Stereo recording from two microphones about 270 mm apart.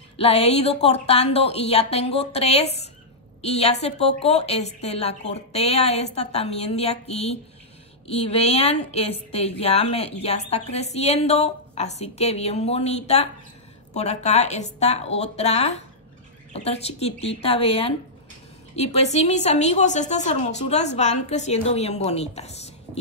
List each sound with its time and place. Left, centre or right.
0.2 s a woman's voice: left